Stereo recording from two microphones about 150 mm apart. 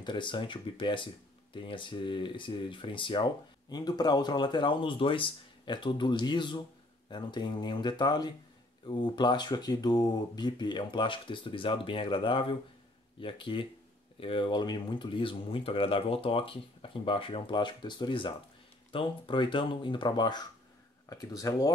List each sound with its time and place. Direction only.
0.0 s speech: 30° left (ahead or behind)